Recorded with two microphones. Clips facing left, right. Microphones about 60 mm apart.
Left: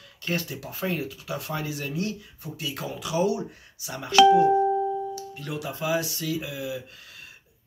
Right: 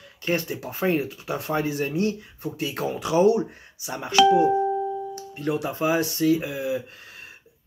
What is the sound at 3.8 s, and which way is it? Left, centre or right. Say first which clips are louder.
Speech: right 4 dB; right.